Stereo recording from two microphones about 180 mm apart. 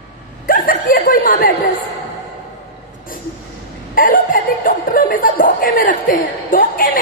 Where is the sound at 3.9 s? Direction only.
50° left (ahead or behind).